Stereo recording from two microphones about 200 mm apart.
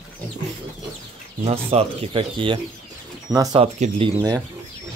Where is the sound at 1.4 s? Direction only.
30° right (ahead or behind).